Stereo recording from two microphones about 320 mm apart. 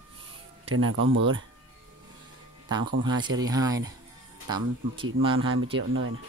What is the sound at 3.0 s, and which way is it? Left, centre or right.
Speech, centre.